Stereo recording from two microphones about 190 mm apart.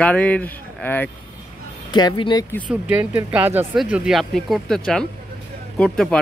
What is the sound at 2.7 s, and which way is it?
Speech, 10° right (ahead or behind).